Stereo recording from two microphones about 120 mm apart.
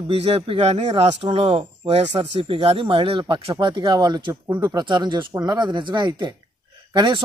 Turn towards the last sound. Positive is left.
turn(degrees=-40)  # may be behind; listen again after turning